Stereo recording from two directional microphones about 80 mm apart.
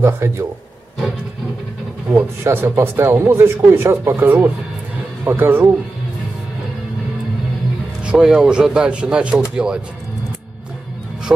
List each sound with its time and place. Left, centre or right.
0.0 s speech: right
2.4 s speech: right
8.0 s speech: centre